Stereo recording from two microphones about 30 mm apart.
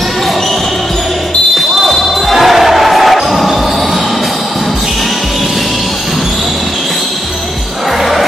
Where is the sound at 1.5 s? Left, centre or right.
Centre.